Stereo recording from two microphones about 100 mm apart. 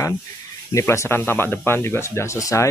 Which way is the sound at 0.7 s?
25° left (ahead or behind).